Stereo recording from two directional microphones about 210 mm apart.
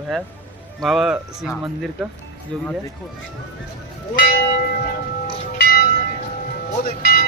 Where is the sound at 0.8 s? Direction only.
Centre (ahead or behind).